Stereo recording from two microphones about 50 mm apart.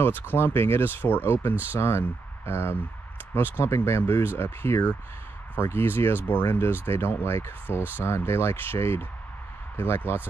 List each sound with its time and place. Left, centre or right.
0.3 s speech: left
1.5 s speech: right
1.8 s speech: left